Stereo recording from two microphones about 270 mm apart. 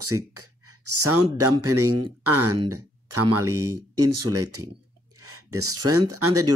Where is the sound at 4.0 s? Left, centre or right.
Right.